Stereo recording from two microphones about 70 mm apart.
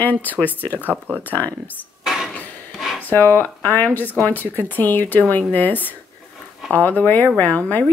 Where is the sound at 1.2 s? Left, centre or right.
Left.